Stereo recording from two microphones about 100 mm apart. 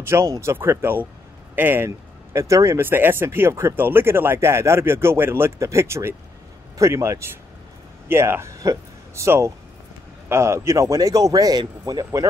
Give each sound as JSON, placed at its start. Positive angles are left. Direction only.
{"t": 0.0, "sound": "speech", "side_deg": -25}
{"t": 1.9, "sound": "a man's voice", "side_deg": -30}